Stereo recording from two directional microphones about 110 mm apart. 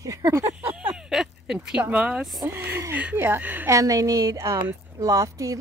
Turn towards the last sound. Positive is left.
turn(degrees=-30)  # may be behind; listen again after turning